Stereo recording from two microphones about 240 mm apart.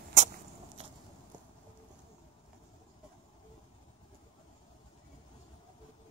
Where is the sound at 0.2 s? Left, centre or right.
Right.